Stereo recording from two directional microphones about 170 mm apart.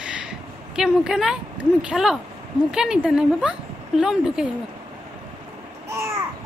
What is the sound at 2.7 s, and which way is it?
Speech, 5° right (ahead or behind).